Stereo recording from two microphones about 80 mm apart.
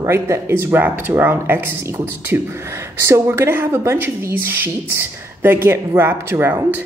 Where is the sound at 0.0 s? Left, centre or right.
Right.